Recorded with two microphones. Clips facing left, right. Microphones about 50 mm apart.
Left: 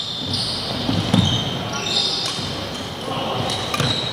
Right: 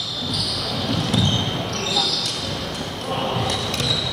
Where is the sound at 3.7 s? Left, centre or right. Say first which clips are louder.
Left 2 dB; left.